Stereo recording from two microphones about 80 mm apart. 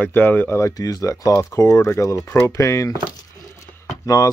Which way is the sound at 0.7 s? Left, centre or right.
Left.